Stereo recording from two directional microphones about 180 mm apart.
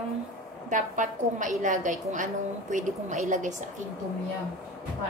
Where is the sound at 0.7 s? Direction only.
45° right (ahead or behind).